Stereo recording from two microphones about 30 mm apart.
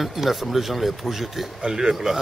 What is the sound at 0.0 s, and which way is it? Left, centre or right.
Speech, centre.